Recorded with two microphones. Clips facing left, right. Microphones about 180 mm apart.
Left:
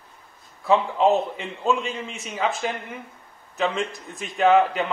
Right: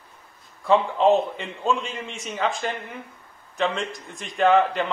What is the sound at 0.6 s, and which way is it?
A man's voice, centre (ahead or behind).